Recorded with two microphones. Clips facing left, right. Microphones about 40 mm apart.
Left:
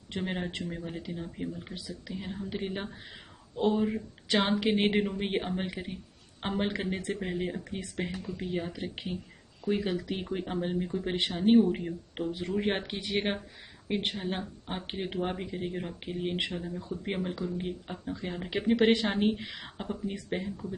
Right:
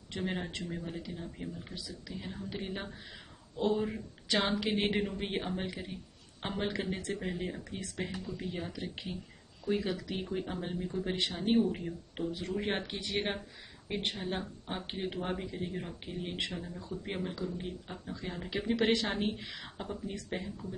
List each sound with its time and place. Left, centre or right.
0.2 s speech: centre
4.6 s speech: left
5.0 s speech: centre
11.3 s speech: centre
11.6 s speech: left
12.4 s speech: centre